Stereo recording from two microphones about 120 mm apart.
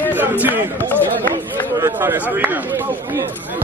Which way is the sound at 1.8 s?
25° right (ahead or behind).